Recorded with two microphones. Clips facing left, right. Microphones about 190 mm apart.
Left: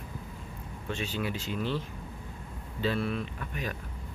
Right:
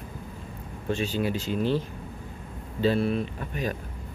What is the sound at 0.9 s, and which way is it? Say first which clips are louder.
Speech: right 6 dB; 35° right (ahead or behind).